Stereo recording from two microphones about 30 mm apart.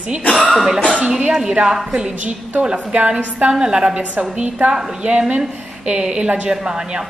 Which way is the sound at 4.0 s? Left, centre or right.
Right.